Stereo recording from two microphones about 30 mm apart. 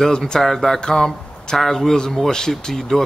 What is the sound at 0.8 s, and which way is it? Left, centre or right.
Speech, left.